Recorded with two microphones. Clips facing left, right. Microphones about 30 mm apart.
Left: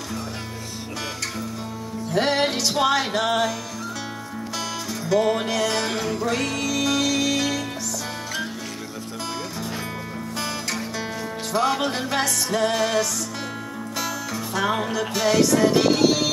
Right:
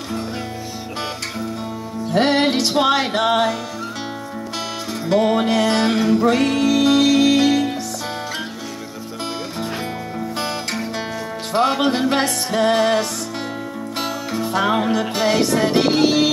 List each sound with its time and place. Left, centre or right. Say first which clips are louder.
2.0 s music: right 5 dB; right
5.0 s music: right 4 dB; right
11.5 s music: right 5 dB; right
14.7 s music: right 5 dB; right